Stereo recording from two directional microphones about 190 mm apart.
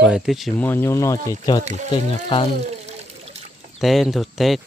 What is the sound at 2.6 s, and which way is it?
Water, 35° right (ahead or behind).